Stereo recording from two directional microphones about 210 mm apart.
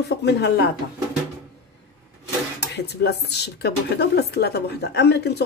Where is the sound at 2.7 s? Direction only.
50° left (ahead or behind).